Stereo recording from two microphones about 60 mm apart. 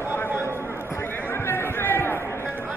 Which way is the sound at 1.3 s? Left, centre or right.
Left.